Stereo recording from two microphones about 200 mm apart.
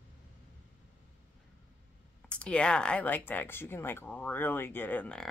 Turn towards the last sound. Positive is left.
turn(degrees=5)  # may be behind; listen again after turning